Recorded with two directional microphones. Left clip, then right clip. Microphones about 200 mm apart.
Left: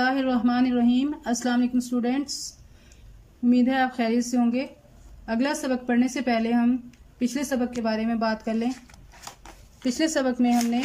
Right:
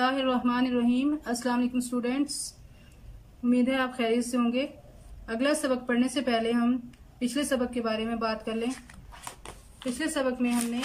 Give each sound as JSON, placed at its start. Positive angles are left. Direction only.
{"t": 0.0, "sound": "a woman's voice", "side_deg": 30}
{"t": 3.4, "sound": "a woman's voice", "side_deg": 30}
{"t": 9.9, "sound": "a woman's voice", "side_deg": 30}